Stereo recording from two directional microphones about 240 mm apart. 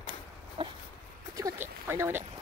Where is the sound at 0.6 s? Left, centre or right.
Centre.